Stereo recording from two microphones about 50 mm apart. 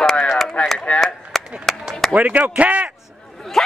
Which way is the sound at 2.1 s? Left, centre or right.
Right.